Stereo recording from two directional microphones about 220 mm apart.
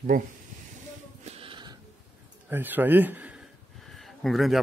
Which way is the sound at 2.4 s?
10° right (ahead or behind).